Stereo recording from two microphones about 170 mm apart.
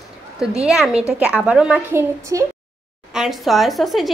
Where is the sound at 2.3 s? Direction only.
20° right (ahead or behind).